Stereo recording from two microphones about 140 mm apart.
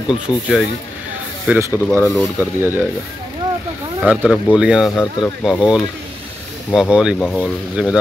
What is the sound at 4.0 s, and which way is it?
Speech, 5° right (ahead or behind).